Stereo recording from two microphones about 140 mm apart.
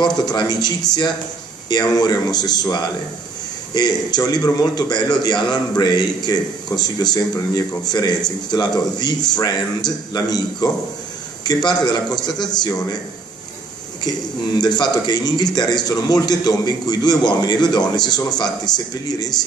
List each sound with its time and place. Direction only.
0.0 s a man's voice: 30° left (ahead or behind)
12.2 s a man's voice: 30° left (ahead or behind)
14.6 s a man's voice: 30° left (ahead or behind)